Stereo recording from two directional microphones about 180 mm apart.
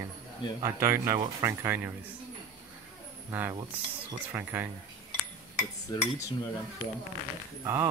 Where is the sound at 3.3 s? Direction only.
10° right (ahead or behind).